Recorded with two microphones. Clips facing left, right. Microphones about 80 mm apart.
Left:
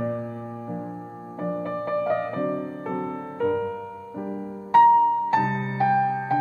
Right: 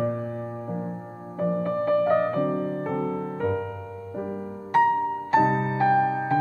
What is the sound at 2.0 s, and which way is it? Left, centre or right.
Music, right.